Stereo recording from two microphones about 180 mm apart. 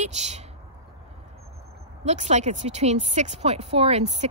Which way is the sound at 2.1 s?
40° right (ahead or behind).